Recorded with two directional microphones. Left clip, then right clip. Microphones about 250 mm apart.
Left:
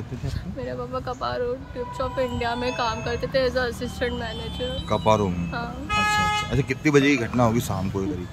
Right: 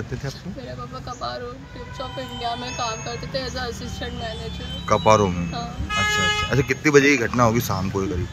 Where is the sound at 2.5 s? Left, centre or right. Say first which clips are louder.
Left 3 dB; left.